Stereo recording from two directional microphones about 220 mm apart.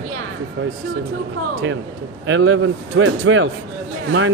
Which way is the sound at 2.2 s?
60° right (ahead or behind).